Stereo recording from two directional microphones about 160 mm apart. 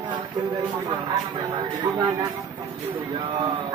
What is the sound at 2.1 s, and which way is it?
Speech, 30° right (ahead or behind).